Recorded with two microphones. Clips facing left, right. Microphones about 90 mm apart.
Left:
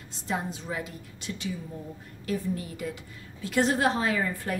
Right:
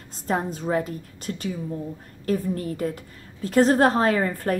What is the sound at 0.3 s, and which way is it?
A woman's voice, 45° right (ahead or behind).